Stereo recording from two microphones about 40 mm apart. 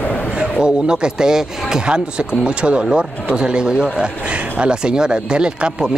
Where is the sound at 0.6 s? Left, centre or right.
Right.